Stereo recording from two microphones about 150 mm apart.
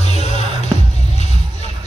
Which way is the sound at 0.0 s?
45° left (ahead or behind).